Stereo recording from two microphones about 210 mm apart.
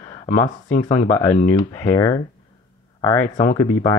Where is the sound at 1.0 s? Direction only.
10° left (ahead or behind).